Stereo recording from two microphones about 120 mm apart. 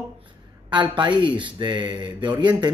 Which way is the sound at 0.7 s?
40° right (ahead or behind).